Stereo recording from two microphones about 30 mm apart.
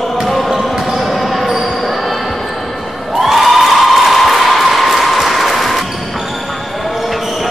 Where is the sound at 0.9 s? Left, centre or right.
Centre.